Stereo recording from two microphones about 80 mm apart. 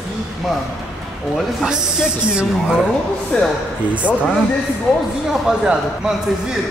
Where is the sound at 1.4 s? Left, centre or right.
Centre.